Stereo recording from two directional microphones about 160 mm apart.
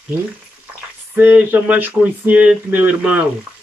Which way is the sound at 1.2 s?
10° right (ahead or behind).